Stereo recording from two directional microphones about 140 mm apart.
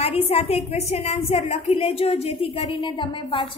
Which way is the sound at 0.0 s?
45° left (ahead or behind).